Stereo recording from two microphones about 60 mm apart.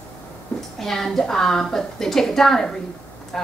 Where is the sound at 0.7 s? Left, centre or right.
Centre.